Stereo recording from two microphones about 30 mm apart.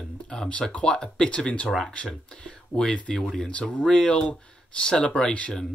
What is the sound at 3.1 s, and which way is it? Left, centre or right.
Speech, left.